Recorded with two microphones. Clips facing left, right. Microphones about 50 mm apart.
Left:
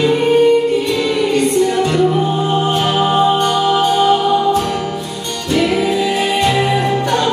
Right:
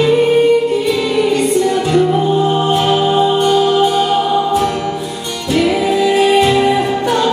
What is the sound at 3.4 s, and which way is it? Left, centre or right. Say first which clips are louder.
Music: right 2 dB; centre.